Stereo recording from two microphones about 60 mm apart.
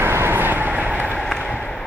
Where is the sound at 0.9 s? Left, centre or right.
Left.